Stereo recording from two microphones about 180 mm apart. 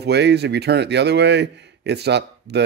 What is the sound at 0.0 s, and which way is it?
Speech, 70° right (ahead or behind).